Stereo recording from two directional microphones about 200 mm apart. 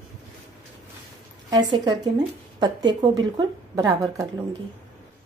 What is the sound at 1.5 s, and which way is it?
A woman's voice, 20° right (ahead or behind).